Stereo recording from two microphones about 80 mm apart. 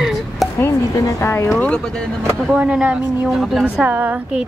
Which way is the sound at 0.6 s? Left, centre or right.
Left.